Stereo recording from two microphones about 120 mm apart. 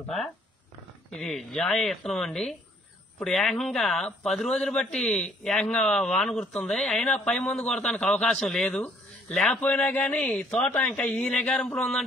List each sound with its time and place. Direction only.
1.1 s speech: centre (ahead or behind)